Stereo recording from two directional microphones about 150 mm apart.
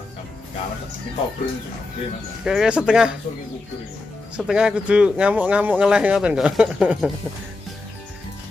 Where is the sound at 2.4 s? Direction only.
5° right (ahead or behind).